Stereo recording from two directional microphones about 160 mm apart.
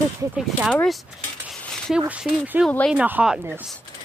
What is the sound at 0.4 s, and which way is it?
Speech, centre (ahead or behind).